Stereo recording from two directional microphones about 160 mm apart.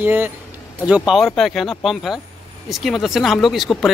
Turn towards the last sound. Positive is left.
turn(degrees=0)  # may be behind; listen again after turning